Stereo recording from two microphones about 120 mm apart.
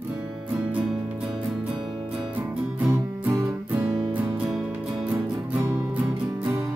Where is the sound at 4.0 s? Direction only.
5° right (ahead or behind).